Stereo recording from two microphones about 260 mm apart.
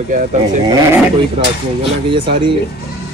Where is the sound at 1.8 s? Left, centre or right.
Centre.